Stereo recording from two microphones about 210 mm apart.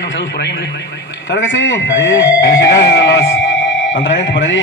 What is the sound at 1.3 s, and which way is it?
Speech, 60° left (ahead or behind).